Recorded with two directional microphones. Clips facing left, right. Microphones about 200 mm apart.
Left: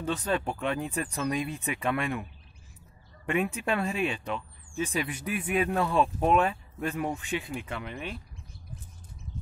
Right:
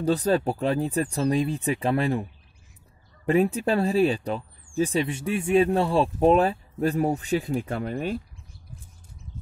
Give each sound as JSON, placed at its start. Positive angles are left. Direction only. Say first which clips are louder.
{"t": 0.0, "sound": "speech", "louder": "right 7 dB", "side_deg": -35}
{"t": 3.3, "sound": "speech", "louder": "right 7 dB", "side_deg": -35}